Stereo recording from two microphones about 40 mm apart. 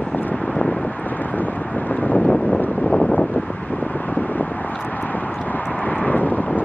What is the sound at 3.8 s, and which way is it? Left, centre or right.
Vehicle, left.